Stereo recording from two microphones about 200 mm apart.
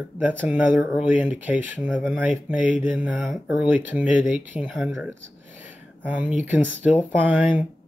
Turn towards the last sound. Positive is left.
turn(degrees=-10)  # may be behind; listen again after turning